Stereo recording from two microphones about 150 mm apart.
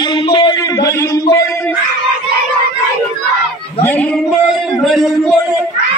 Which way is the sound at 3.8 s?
10° left (ahead or behind).